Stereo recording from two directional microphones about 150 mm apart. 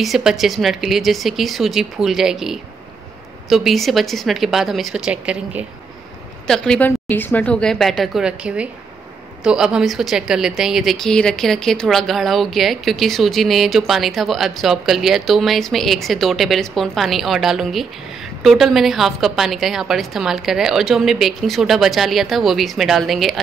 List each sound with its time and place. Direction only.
0.0 s a woman's voice: centre (ahead or behind)
6.4 s a woman's voice: 5° left (ahead or behind)